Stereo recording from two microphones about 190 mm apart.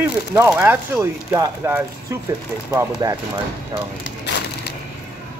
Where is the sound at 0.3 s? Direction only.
15° right (ahead or behind).